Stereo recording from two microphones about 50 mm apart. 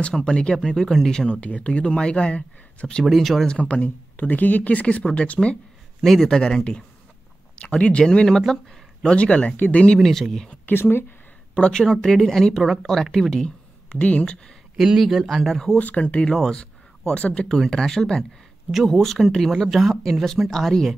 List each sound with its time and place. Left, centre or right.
0.1 s speech: centre
0.6 s speech: centre
1.3 s speech: left
3.0 s a woman's voice: centre
3.4 s speech: left
5.9 s speech: centre
9.1 s speech: left
9.9 s a woman's voice: centre
10.7 s speech: left
11.5 s speech: centre
15.0 s a woman's voice: centre
15.8 s speech: left
16.3 s speech: centre
17.5 s a woman's voice: centre